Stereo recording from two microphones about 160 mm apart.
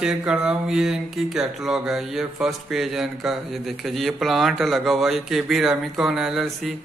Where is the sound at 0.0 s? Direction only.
5° right (ahead or behind).